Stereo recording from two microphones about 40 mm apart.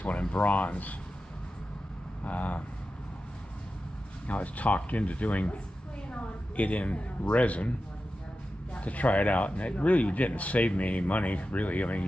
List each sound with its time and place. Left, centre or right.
0.4 s speech: left
2.2 s speech: left
4.3 s speech: left
8.7 s speech: left